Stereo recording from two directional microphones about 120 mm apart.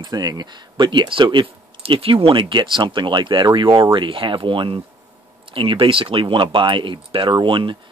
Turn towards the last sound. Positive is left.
turn(degrees=-40)  # may be behind; listen again after turning